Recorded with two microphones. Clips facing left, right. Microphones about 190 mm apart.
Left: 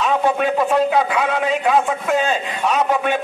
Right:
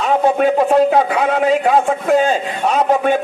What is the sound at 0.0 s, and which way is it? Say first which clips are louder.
A man's voice: right 4 dB; 45° right (ahead or behind).